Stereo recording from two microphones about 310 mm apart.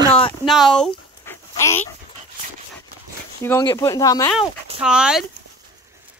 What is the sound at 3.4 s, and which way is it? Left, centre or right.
Speech, centre.